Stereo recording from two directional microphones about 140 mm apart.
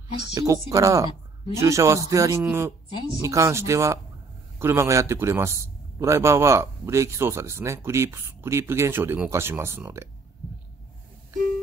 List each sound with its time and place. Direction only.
0.3 s a man's voice: 25° right (ahead or behind)